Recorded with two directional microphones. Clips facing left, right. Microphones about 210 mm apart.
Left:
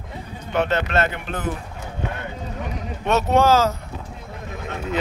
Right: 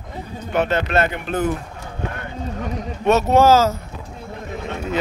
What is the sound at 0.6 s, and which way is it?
Speech, 10° right (ahead or behind).